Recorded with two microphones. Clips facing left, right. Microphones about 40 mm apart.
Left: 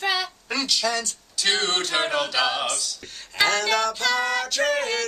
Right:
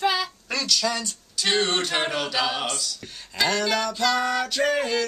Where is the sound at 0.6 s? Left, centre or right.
Centre.